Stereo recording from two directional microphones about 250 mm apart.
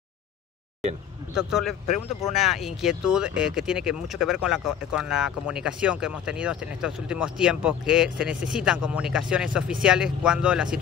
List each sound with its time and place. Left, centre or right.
1.3 s speech: centre